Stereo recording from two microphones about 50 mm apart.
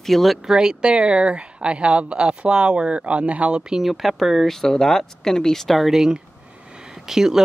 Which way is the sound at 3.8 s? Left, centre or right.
Centre.